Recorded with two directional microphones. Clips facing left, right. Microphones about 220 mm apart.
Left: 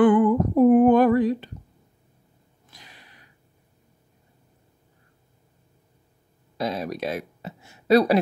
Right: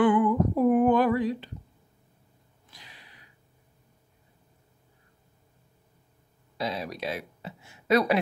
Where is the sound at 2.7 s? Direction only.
45° left (ahead or behind).